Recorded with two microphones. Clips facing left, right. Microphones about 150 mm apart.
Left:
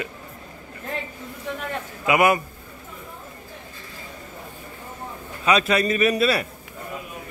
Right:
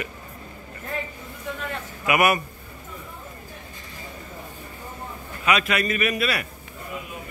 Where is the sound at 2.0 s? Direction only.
20° left (ahead or behind).